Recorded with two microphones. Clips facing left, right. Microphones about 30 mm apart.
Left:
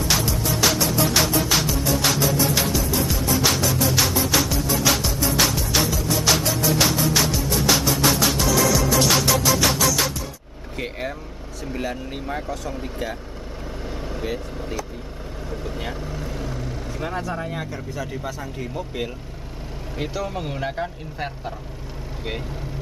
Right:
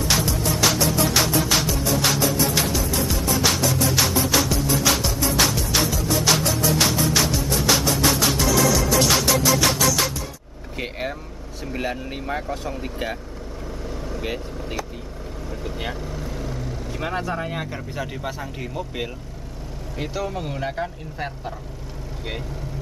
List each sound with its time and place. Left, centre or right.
0.1 s music: centre
10.8 s vehicle: centre
11.8 s speech: centre
13.8 s vehicle: centre
14.2 s speech: centre
15.9 s vehicle: centre
17.0 s speech: centre
20.2 s speech: centre